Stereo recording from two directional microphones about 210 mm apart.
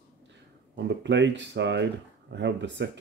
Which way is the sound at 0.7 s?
60° right (ahead or behind).